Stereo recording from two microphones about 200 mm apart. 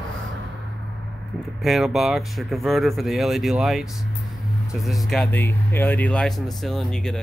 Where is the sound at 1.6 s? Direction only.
Centre (ahead or behind).